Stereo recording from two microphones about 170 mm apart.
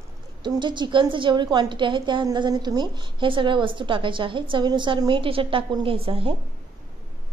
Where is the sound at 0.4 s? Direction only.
25° right (ahead or behind).